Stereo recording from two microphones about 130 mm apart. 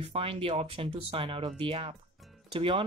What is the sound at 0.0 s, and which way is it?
Speech, 45° right (ahead or behind).